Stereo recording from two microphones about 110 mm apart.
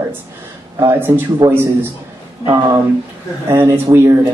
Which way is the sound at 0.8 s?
20° right (ahead or behind).